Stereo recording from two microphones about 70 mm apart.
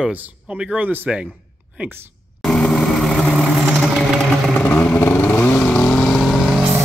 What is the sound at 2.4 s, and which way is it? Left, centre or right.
Vehicle, centre.